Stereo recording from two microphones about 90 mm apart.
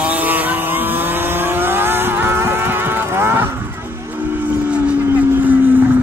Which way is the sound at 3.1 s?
25° right (ahead or behind).